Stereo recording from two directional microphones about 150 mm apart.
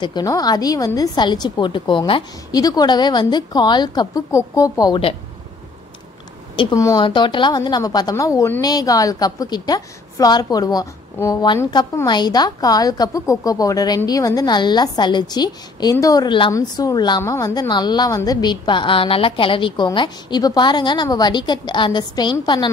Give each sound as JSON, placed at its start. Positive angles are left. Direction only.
{"t": 0.0, "sound": "a woman's voice", "side_deg": 25}
{"t": 6.5, "sound": "a woman's voice", "side_deg": 35}
{"t": 7.1, "sound": "a woman's voice", "side_deg": 35}